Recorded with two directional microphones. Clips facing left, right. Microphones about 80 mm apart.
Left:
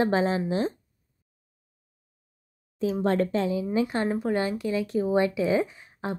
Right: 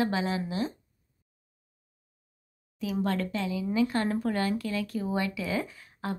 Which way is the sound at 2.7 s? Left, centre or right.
Left.